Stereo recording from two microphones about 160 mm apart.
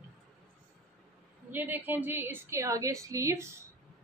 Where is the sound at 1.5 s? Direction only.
10° right (ahead or behind).